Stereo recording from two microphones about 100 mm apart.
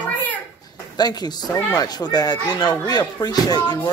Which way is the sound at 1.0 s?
45° left (ahead or behind).